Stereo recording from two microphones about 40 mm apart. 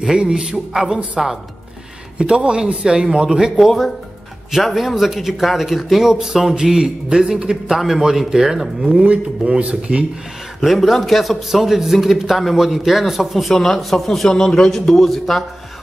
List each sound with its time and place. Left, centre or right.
0.2 s a man's voice: centre
3.5 s a man's voice: centre
9.4 s a man's voice: right
10.6 s a man's voice: centre